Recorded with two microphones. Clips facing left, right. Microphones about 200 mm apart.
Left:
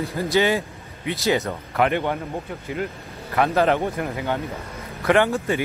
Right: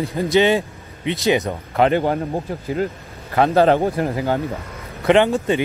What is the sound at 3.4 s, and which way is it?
Speech, 30° right (ahead or behind).